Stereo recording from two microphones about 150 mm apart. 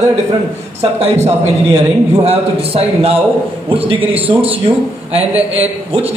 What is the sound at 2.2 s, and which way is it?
Speech, 40° right (ahead or behind).